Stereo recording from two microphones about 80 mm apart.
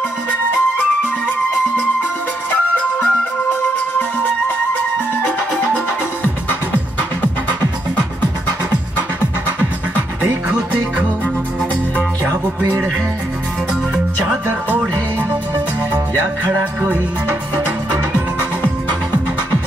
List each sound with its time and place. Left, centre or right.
2.7 s music: centre
5.2 s music: centre
10.2 s music: centre
16.4 s music: right